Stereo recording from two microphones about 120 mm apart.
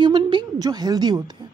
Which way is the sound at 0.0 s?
40° right (ahead or behind).